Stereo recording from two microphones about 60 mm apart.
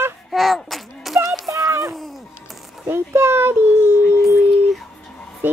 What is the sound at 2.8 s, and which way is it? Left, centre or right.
Dog, right.